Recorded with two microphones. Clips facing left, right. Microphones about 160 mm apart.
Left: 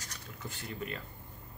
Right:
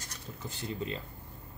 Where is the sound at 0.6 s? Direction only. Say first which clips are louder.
Right 4 dB; 25° right (ahead or behind).